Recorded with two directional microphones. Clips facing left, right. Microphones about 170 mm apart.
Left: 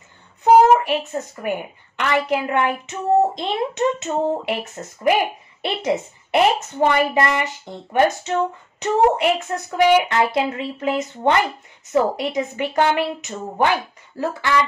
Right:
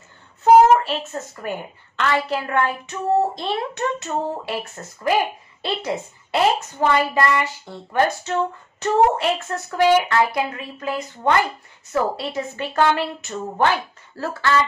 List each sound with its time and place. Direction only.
0.4 s a woman's voice: 15° left (ahead or behind)